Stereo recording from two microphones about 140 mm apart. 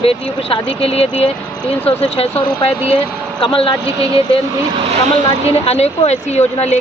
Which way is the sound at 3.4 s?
40° left (ahead or behind).